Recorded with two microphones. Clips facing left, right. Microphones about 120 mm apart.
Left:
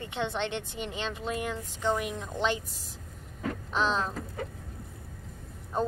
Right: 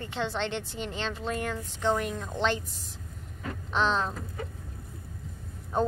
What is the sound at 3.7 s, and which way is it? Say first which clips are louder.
Speech: right 2 dB; 5° left (ahead or behind).